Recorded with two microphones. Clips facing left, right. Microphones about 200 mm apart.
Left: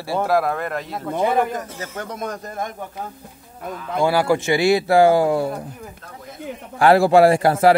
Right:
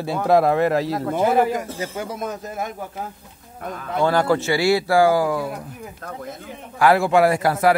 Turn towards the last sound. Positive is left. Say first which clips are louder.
# left 3 dB
turn(degrees=30)  # may be behind; listen again after turning